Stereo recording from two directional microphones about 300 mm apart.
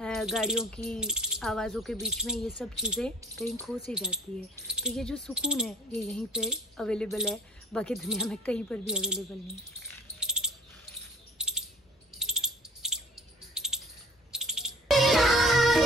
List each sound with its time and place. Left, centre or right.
0.0 s speech: centre
10.2 s a sound: centre
14.3 s music: centre